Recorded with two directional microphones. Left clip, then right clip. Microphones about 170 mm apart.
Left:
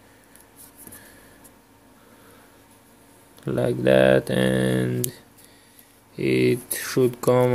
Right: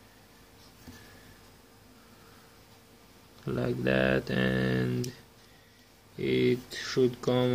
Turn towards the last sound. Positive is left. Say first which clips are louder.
# left 8 dB
turn(degrees=40)  # may be behind; listen again after turning